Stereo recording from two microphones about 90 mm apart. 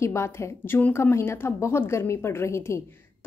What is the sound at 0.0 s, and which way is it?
A woman's voice, 30° left (ahead or behind).